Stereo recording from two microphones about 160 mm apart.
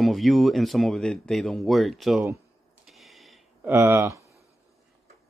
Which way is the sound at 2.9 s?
Centre (ahead or behind).